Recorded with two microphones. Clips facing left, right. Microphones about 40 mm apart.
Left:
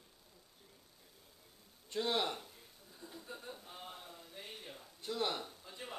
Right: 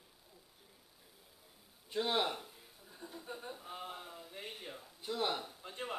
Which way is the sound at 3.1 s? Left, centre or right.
Centre.